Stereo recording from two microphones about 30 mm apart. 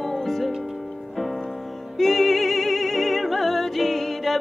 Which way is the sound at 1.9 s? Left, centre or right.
Centre.